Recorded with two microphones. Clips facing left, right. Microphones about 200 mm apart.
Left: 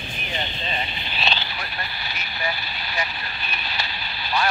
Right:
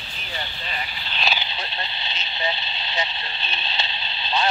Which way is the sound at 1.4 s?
25° right (ahead or behind).